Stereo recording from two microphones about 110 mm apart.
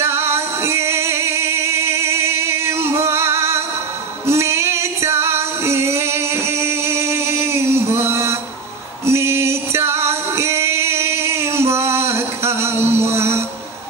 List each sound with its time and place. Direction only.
0.0 s music: 20° right (ahead or behind)
4.3 s female singing: 25° right (ahead or behind)
9.0 s music: 25° right (ahead or behind)